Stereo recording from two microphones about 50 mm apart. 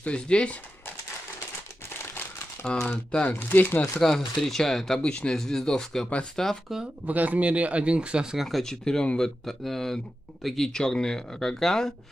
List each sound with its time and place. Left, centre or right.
0.0 s speech: left
2.6 s speech: centre
3.3 s speech: left
4.0 s speech: centre
5.0 s speech: centre
7.1 s speech: right; by 8.5 s centre
8.5 s speech: centre
8.8 s speech: centre
9.5 s speech: centre